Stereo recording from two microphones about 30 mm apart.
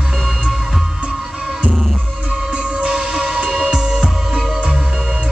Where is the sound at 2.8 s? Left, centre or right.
Right.